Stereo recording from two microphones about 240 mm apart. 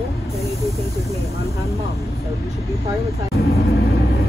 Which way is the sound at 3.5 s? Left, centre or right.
Left.